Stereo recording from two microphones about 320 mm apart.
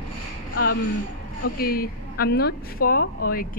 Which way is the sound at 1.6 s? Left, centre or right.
Left.